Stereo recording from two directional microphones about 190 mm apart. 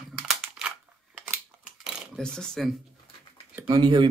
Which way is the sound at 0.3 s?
5° right (ahead or behind).